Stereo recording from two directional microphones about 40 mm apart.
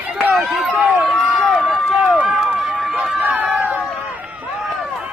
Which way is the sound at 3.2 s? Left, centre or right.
Right.